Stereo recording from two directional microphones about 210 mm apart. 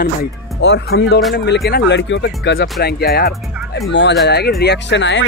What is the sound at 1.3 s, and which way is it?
Speech, 50° left (ahead or behind).